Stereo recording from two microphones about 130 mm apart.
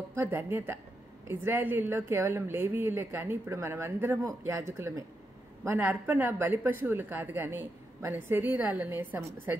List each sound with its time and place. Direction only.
0.1 s speech: 15° right (ahead or behind)